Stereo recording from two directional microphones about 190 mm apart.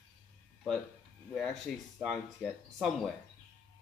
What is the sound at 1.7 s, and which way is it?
Speech, centre (ahead or behind).